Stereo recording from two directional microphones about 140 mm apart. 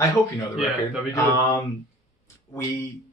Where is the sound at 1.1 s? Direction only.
25° left (ahead or behind).